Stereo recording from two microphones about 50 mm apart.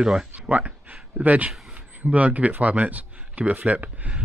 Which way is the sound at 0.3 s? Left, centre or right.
Right.